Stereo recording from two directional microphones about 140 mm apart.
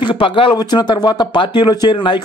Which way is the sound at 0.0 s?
35° left (ahead or behind).